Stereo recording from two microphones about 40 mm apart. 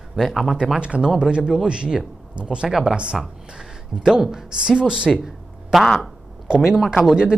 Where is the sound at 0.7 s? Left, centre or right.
Right.